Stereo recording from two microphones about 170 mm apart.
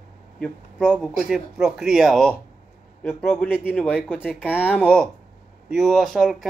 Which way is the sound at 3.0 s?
10° left (ahead or behind).